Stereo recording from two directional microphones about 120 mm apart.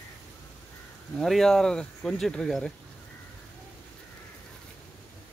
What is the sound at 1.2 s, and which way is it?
Speech, centre (ahead or behind).